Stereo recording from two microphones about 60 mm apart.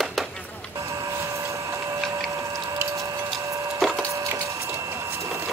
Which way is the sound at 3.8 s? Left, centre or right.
Centre.